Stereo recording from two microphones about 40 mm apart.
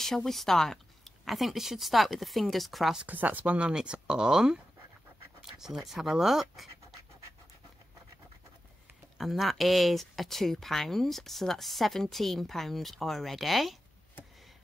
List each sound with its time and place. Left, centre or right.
0.0 s speech: centre
1.2 s speech: centre
3.1 s speech: right
3.4 s speech: right; by 6.7 s centre
9.2 s speech: centre